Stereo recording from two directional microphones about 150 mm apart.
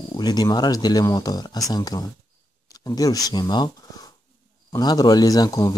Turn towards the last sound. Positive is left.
turn(degrees=25)  # may be behind; listen again after turning